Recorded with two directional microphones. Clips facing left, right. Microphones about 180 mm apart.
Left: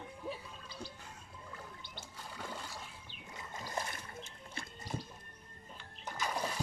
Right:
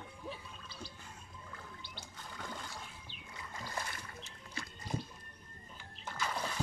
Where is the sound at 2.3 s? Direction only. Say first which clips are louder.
Left 1 dB; 5° left (ahead or behind).